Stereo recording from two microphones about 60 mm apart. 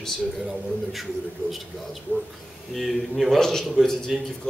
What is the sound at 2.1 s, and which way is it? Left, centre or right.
Speech, left.